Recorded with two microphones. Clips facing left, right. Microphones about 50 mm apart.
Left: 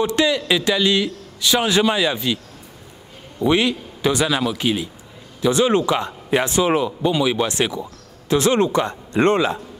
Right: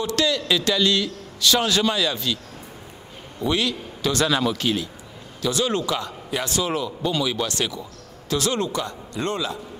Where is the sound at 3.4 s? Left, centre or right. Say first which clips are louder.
Left 6 dB; left.